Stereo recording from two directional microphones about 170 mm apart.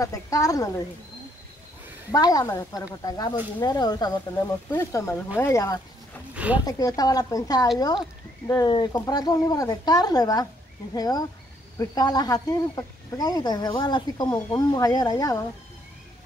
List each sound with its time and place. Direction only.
0.0 s speech: 20° left (ahead or behind)
2.1 s speech: 20° left (ahead or behind)
6.3 s a sound: 10° right (ahead or behind)
6.6 s speech: 20° left (ahead or behind)